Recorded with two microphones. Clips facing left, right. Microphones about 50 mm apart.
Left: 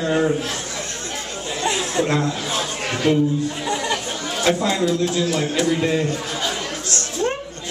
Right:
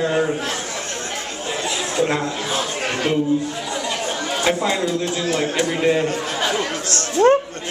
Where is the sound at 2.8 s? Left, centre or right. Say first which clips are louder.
Right 1 dB; right.